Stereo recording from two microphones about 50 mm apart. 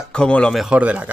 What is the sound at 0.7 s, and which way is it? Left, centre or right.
Speech, right.